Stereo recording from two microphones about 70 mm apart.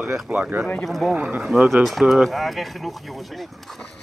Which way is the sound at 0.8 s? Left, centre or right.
Centre.